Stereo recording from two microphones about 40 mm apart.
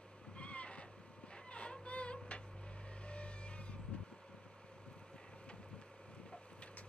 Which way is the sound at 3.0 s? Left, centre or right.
Left.